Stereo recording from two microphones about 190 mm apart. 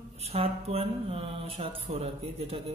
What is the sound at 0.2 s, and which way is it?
Speech, 35° right (ahead or behind).